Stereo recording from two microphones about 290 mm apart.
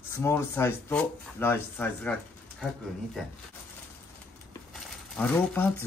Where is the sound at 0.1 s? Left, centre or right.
Centre.